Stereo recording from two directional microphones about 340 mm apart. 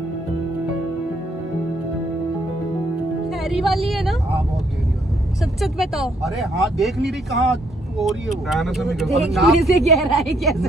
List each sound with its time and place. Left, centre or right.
3.3 s speech: centre